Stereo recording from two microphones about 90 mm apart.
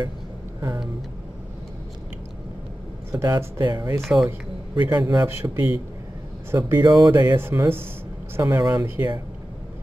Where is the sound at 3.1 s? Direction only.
35° right (ahead or behind).